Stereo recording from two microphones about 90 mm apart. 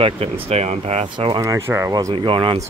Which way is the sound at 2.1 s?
70° right (ahead or behind).